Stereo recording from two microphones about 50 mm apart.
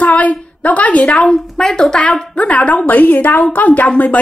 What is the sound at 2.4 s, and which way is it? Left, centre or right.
A woman's voice, left.